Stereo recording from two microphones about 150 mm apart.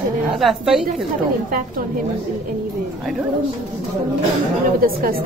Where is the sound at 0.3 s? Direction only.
Centre (ahead or behind).